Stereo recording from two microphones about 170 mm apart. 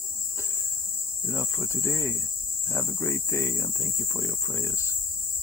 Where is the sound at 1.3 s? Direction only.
15° left (ahead or behind).